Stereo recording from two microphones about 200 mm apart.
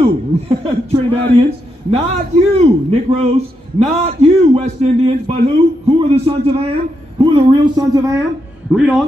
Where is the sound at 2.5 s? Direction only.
30° right (ahead or behind); by 8.2 s 15° right (ahead or behind).